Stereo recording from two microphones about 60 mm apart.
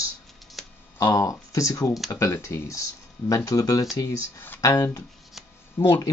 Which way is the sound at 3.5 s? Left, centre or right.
Left.